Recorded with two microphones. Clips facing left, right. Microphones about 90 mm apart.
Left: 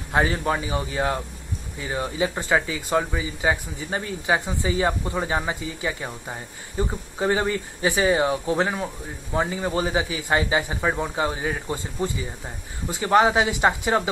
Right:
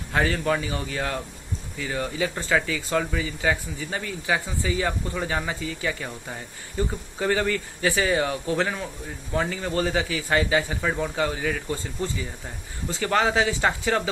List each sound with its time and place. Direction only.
0.1 s speech: 20° left (ahead or behind)